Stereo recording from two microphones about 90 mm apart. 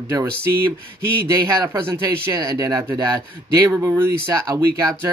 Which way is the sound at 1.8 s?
30° right (ahead or behind).